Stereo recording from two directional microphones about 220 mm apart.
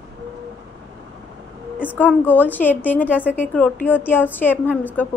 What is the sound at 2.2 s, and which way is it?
A woman's voice, 10° left (ahead or behind).